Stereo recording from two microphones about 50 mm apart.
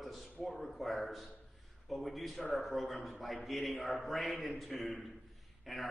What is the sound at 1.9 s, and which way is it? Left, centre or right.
A man's voice, centre.